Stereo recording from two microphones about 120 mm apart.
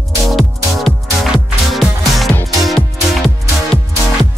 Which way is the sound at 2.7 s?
Centre (ahead or behind).